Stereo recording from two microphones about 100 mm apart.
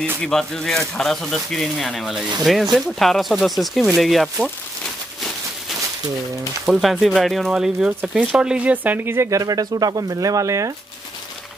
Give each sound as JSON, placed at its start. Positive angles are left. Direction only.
{"t": 0.2, "sound": "speech", "side_deg": 5}
{"t": 6.6, "sound": "speech", "side_deg": 0}